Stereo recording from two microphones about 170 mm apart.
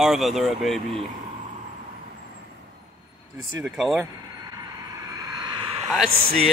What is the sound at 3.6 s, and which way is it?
Speech, centre (ahead or behind).